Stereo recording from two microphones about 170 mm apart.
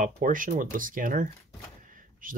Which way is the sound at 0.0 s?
50° right (ahead or behind).